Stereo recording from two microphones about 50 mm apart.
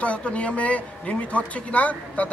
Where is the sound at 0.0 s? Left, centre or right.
Left.